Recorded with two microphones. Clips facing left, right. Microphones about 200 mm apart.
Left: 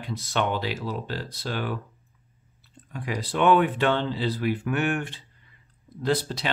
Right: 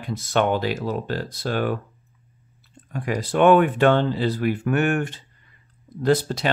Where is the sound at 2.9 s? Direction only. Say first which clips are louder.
Right 6 dB; 50° right (ahead or behind).